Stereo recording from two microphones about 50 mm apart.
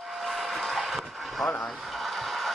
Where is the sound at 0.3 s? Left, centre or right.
Centre.